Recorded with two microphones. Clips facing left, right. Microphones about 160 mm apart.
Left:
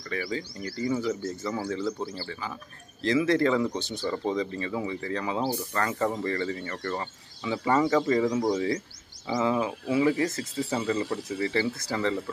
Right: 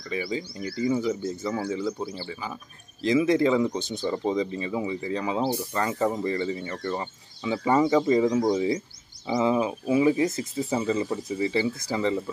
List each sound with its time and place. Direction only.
0.1 s speech: 15° right (ahead or behind)
9.3 s speech: 20° right (ahead or behind)